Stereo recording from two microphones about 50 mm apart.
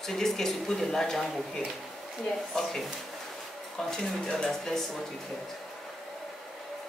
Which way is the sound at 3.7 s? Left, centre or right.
Centre.